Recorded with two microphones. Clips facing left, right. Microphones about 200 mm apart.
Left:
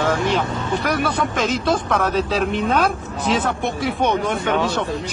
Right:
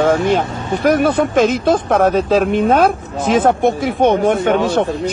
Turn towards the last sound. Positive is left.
turn(degrees=-55)  # may be behind; listen again after turning